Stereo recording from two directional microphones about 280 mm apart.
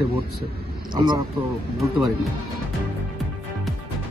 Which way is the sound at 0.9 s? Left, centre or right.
Centre.